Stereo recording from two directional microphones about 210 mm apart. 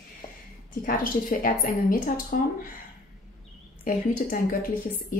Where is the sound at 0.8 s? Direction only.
40° left (ahead or behind).